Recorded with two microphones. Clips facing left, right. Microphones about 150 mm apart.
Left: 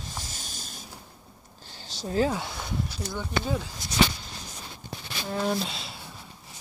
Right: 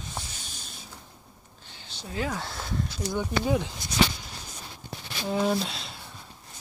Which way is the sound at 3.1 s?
15° right (ahead or behind).